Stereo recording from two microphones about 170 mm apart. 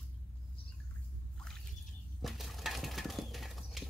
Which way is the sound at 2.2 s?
Centre (ahead or behind).